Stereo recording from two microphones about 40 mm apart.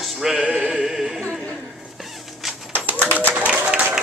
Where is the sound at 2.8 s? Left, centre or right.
Right.